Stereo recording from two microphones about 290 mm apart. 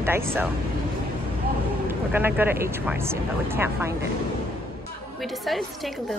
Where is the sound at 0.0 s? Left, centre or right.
Centre.